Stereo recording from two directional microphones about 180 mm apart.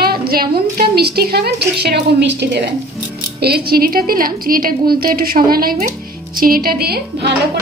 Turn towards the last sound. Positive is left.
turn(degrees=-60)  # may be behind; listen again after turning